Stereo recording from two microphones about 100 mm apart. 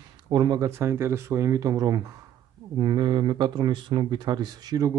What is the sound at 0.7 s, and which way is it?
Speech, 25° right (ahead or behind).